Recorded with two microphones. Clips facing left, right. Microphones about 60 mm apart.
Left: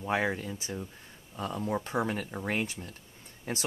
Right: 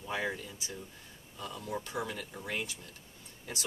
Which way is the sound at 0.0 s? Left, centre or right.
Left.